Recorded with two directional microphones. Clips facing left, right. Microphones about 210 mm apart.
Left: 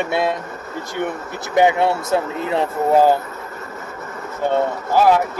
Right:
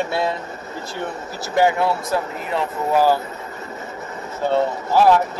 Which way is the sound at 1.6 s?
20° left (ahead or behind).